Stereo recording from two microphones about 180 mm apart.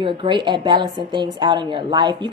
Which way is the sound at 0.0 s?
25° right (ahead or behind).